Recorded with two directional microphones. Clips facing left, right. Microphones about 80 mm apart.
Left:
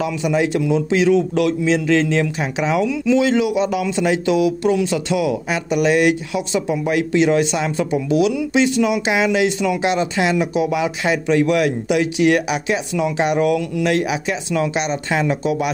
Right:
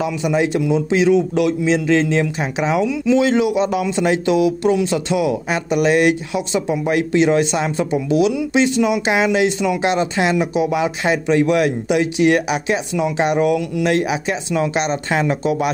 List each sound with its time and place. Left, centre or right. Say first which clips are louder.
0.0 s speech: right 1 dB; right
14.7 s speech: right 1 dB; right